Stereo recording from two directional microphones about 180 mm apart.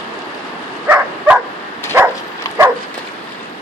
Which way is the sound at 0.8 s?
10° right (ahead or behind).